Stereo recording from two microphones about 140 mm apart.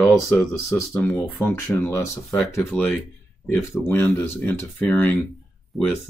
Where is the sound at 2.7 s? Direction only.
5° left (ahead or behind).